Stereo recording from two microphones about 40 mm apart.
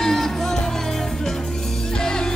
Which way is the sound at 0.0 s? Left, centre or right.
Centre.